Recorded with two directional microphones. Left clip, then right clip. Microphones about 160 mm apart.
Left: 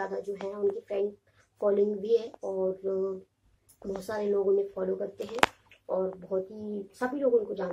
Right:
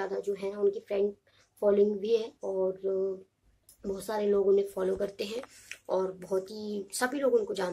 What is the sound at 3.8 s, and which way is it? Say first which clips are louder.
Speech: right 1 dB; 5° right (ahead or behind).